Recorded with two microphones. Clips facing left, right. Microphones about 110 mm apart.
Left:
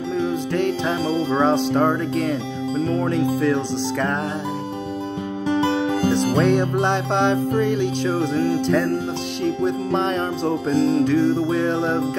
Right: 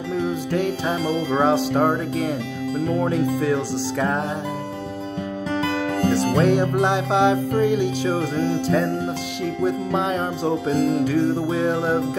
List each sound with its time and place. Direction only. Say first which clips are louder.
0.5 s music: left 1 dB; 10° right (ahead or behind)
6.3 s music: even; 5° right (ahead or behind)
8.5 s speech: left 1 dB; 5° right (ahead or behind)
9.4 s music: left 1 dB; 10° right (ahead or behind)